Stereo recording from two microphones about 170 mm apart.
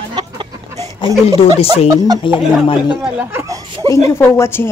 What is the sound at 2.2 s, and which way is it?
Speech, 30° left (ahead or behind).